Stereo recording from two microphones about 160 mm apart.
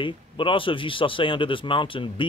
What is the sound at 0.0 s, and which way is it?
Speech, 30° left (ahead or behind).